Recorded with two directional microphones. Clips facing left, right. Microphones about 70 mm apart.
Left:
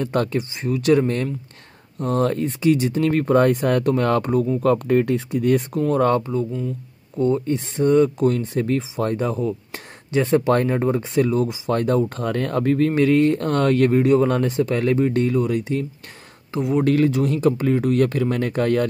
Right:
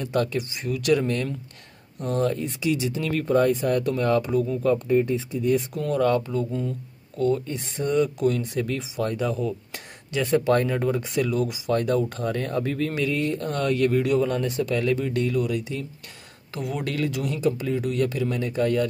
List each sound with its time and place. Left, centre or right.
0.0 s speech: left
4.6 s speech: left
5.8 s speech: left
7.2 s speech: left
11.7 s speech: left